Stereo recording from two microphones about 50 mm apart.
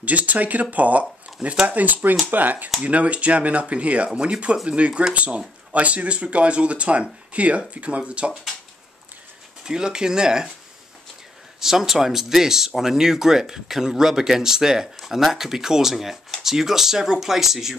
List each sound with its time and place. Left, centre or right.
0.0 s speech: right
9.7 s speech: centre
11.6 s speech: centre